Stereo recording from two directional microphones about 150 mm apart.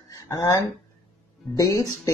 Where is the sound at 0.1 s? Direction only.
20° left (ahead or behind).